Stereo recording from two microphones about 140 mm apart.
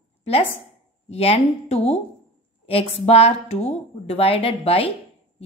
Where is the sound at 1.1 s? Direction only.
45° left (ahead or behind).